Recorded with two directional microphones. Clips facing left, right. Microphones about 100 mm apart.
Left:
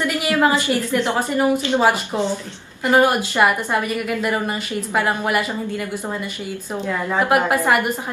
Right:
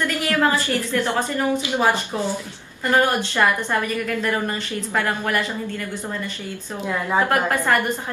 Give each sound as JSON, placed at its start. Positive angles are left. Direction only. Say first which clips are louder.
{"t": 0.0, "sound": "a woman's voice", "louder": "left 2 dB", "side_deg": 15}
{"t": 7.2, "sound": "a woman's voice", "louder": "left 3 dB", "side_deg": 15}